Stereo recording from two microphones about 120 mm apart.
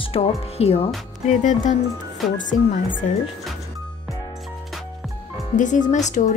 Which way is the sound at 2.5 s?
65° left (ahead or behind).